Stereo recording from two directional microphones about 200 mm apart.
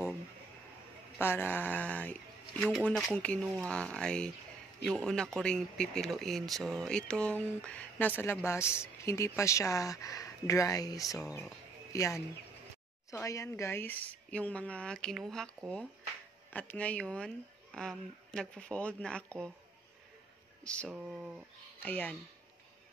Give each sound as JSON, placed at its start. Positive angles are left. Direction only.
{"t": 1.2, "sound": "speech", "side_deg": 10}
{"t": 20.6, "sound": "speech", "side_deg": 5}
{"t": 21.8, "sound": "speech", "side_deg": 10}